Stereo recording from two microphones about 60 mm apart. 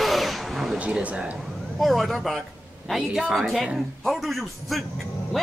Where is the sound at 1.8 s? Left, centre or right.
Centre.